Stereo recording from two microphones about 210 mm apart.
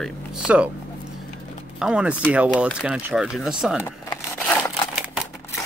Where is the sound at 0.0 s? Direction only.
5° right (ahead or behind).